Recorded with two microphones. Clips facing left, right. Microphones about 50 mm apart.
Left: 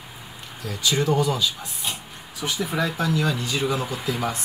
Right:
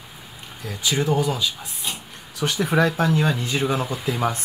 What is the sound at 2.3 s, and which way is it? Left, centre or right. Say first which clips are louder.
Speech: right 5 dB; right.